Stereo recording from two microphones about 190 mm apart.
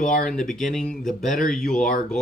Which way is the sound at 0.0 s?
Centre (ahead or behind).